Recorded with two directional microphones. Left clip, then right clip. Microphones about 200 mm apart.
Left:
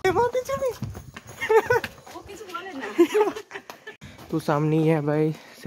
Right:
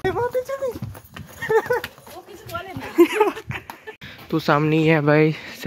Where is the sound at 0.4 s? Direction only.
10° left (ahead or behind).